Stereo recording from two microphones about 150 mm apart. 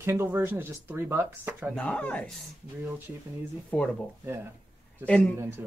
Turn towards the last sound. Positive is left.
turn(degrees=5)  # may be behind; listen again after turning